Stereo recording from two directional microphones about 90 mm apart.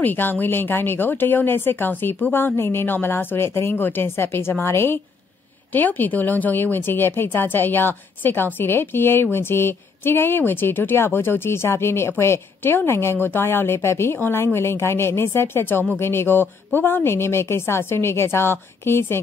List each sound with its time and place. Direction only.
0.0 s a woman's voice: 20° left (ahead or behind)